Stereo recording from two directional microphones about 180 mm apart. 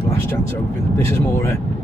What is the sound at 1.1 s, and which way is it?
Speech, 15° left (ahead or behind).